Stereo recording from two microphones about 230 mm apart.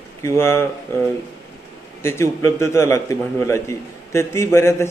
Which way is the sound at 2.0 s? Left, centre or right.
Centre.